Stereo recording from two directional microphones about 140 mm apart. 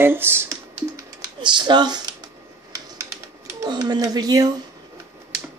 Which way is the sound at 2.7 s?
25° right (ahead or behind).